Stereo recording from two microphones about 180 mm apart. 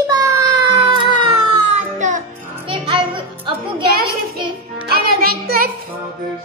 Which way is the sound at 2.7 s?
30° right (ahead or behind).